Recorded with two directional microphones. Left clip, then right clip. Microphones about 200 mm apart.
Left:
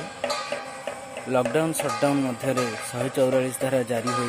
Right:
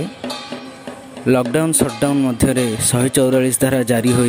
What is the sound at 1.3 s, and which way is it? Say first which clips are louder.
Speech: right 7 dB; 55° right (ahead or behind).